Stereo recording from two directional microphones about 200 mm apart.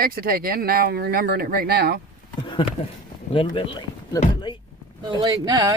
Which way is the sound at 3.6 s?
20° left (ahead or behind).